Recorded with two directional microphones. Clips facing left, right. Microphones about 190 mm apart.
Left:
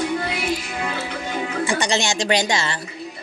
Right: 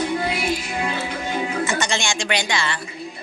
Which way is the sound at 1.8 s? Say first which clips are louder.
Left 3 dB; 35° left (ahead or behind).